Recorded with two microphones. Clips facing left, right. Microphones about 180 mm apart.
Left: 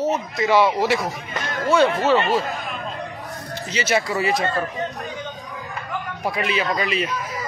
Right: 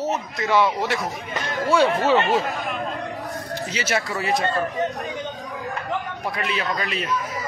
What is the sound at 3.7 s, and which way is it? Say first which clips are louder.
Speech: left 5 dB; centre (ahead or behind).